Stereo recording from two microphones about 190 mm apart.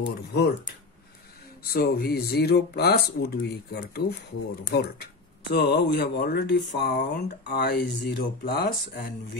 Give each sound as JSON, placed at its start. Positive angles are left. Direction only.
{"t": 0.0, "sound": "speech", "side_deg": 60}
{"t": 1.6, "sound": "speech", "side_deg": 55}